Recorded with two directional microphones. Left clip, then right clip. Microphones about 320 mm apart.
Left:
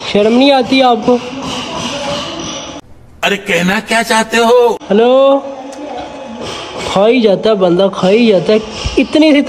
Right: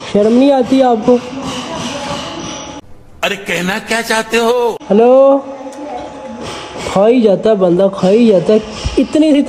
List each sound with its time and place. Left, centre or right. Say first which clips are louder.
0.4 s speech: left 2 dB; centre
3.2 s a man's voice: left 3 dB; centre
4.8 s speech: right 1 dB; centre
6.9 s speech: even; centre